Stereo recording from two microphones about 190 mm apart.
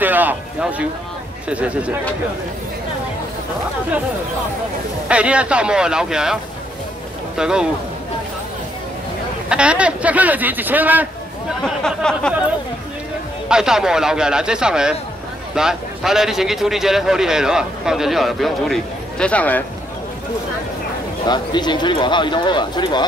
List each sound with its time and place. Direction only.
0.0 s a man's voice: 10° right (ahead or behind)
5.0 s a man's voice: 5° right (ahead or behind)
9.5 s a man's voice: 5° right (ahead or behind)
11.6 s a man's voice: 5° left (ahead or behind)
13.5 s a man's voice: 5° right (ahead or behind)
21.3 s speech: 25° left (ahead or behind)